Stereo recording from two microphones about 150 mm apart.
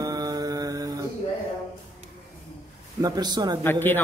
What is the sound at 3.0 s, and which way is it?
Speech, 25° right (ahead or behind).